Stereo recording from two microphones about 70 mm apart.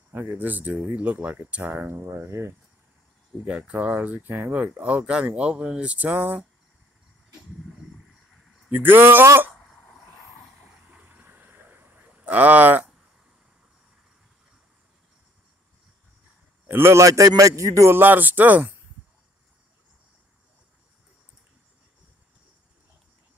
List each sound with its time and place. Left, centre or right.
0.1 s speech: right
2.2 s speech: right
3.4 s speech: centre
7.7 s a sound: centre
8.7 s speech: right
10.5 s a sound: centre
11.0 s a sound: right
16.6 s a man's voice: right
17.0 s a man's voice: right
17.9 s speech: right